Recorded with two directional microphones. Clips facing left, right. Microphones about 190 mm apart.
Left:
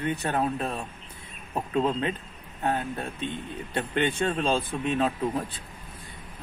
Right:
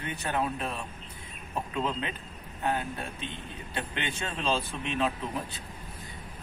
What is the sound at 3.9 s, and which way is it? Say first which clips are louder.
Speech: left 13 dB; 50° left (ahead or behind).